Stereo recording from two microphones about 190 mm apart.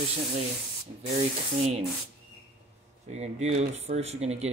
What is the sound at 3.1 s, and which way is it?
Speech, 35° right (ahead or behind).